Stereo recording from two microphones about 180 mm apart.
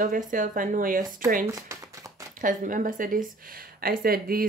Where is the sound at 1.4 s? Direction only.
15° right (ahead or behind).